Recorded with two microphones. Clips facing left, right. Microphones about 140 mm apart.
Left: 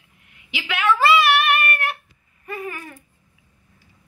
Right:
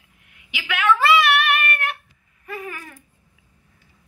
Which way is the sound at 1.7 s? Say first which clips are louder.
Left 1 dB; 15° left (ahead or behind).